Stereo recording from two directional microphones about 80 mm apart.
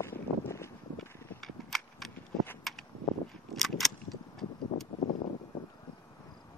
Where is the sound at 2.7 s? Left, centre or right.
Centre.